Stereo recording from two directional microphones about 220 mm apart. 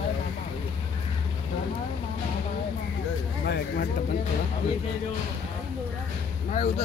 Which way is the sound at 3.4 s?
45° left (ahead or behind).